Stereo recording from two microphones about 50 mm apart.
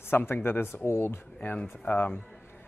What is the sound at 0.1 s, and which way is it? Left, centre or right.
Speech, left.